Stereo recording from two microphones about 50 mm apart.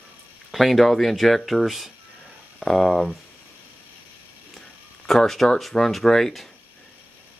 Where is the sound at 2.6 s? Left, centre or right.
Centre.